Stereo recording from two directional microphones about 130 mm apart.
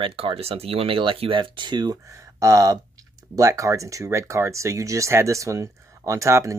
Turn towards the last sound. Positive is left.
turn(degrees=-25)  # may be behind; listen again after turning